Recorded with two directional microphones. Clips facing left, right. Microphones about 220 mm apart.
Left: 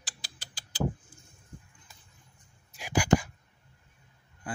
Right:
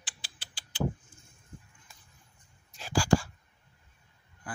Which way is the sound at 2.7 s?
15° left (ahead or behind).